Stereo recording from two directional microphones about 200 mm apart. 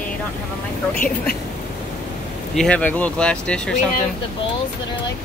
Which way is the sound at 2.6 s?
5° left (ahead or behind).